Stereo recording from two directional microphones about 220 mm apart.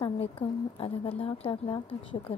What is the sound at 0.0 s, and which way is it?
A woman's voice, 25° left (ahead or behind).